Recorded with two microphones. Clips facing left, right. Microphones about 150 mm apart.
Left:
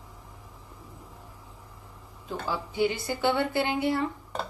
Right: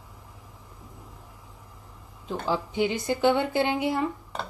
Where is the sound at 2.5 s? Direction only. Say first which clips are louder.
Right 1 dB; 20° right (ahead or behind).